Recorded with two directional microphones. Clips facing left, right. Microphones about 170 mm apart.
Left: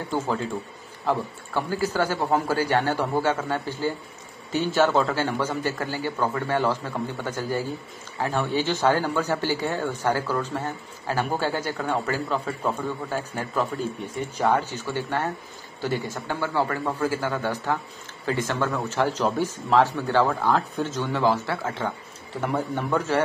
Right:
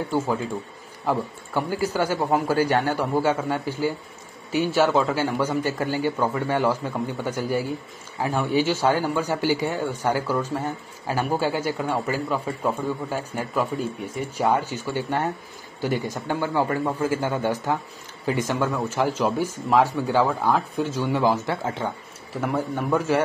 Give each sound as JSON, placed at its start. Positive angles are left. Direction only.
{"t": 1.0, "sound": "speech", "side_deg": -15}
{"t": 22.4, "sound": "speech", "side_deg": -10}